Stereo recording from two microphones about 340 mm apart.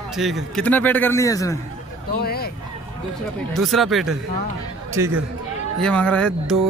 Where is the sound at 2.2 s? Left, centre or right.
Left.